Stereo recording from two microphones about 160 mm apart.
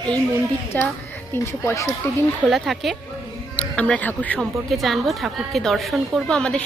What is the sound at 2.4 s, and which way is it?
A woman's voice, centre (ahead or behind).